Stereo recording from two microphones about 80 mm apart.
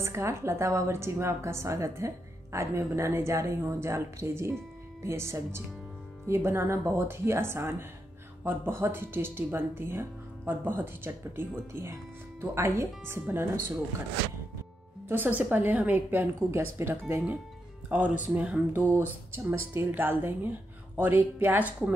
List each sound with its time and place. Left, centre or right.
0.0 s a woman's voice: right
15.0 s a woman's voice: right
17.8 s a woman's voice: centre